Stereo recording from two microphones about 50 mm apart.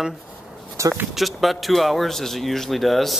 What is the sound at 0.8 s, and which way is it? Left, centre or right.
Speech, right.